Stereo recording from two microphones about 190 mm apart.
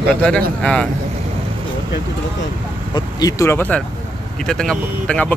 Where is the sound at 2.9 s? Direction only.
20° left (ahead or behind).